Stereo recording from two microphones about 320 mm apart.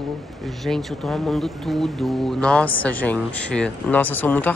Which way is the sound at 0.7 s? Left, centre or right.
Centre.